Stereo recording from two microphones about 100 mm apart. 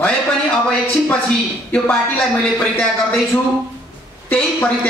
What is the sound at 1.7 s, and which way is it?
A man's voice, 10° left (ahead or behind).